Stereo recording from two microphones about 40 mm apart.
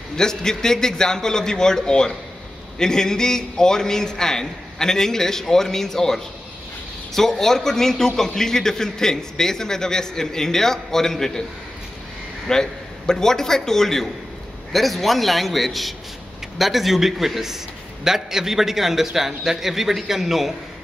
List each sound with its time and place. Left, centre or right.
0.1 s a man's voice: centre
12.4 s a man's voice: centre